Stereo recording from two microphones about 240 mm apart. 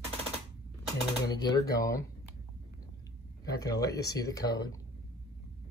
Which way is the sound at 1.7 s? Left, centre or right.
Centre.